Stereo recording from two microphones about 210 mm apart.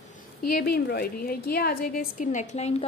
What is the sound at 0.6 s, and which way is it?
A woman's voice, 50° left (ahead or behind).